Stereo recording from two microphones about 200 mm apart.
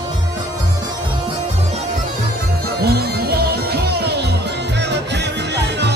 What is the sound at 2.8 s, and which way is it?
Music, 50° right (ahead or behind).